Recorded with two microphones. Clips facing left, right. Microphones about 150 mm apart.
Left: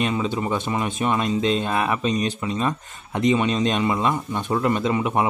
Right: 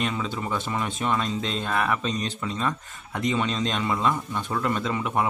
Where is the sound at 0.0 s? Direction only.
20° left (ahead or behind).